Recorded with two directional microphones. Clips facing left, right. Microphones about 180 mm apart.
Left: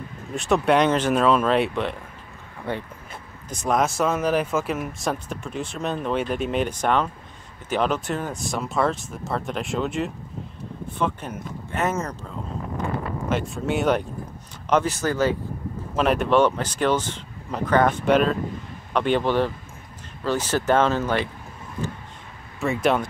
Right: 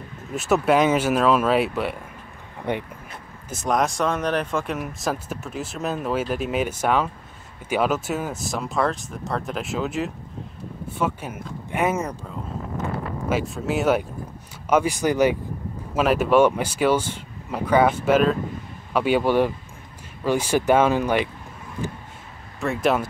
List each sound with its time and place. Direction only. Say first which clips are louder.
0.3 s speech: even; 5° right (ahead or behind)
2.7 s speech: right 3 dB; 20° right (ahead or behind)
3.4 s speech: even; centre (ahead or behind)
13.3 s speech: right 1 dB; 5° right (ahead or behind)
16.0 s speech: right 2 dB; 5° right (ahead or behind)
22.6 s speech: even; centre (ahead or behind)